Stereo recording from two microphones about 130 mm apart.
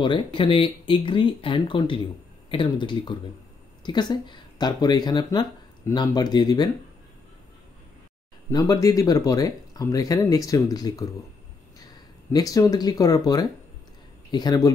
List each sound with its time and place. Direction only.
0.0 s speech: 40° left (ahead or behind)
8.5 s speech: 25° left (ahead or behind)
12.3 s speech: 30° left (ahead or behind)